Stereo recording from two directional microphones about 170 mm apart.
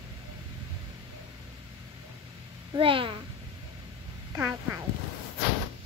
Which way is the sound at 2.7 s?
30° right (ahead or behind).